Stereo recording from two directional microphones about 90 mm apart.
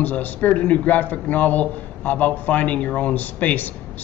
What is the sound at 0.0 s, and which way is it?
Speech, 20° left (ahead or behind).